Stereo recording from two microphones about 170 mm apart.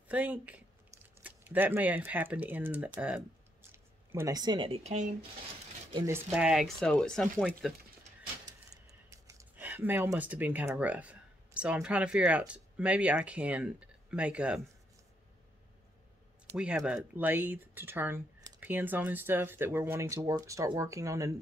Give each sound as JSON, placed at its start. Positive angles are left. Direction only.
{"t": 0.1, "sound": "speech", "side_deg": -10}
{"t": 6.0, "sound": "speech", "side_deg": -10}
{"t": 9.1, "sound": "speech", "side_deg": -15}
{"t": 16.4, "sound": "speech", "side_deg": -5}